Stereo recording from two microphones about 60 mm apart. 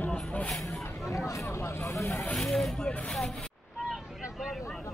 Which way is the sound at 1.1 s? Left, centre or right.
Left.